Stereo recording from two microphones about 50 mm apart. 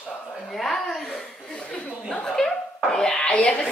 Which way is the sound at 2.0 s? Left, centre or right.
Centre.